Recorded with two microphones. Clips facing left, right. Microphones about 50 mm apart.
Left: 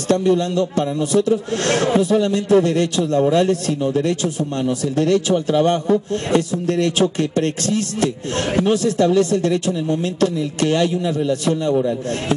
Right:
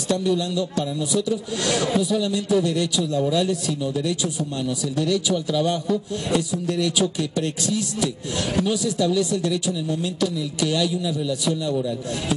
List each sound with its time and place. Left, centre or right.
0.1 s a man's voice: left